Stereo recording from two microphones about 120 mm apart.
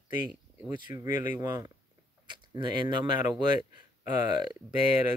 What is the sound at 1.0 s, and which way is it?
Speech, 90° left.